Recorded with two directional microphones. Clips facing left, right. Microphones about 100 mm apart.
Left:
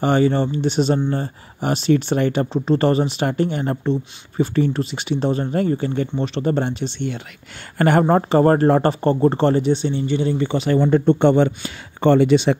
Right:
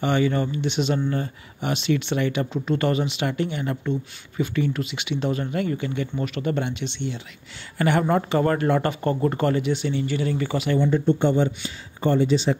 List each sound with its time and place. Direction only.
0.0 s speech: 35° left (ahead or behind)
10.7 s speech: 50° left (ahead or behind); by 12.5 s 65° left (ahead or behind)